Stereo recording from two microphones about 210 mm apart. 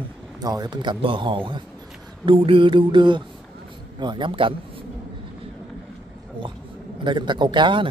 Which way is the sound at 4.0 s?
20° right (ahead or behind).